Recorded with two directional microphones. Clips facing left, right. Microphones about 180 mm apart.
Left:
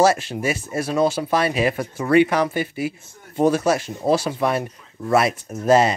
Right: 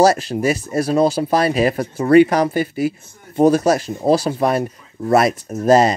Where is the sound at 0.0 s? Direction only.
40° right (ahead or behind).